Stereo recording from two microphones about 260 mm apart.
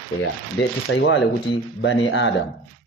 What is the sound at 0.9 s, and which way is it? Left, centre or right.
Speech, left.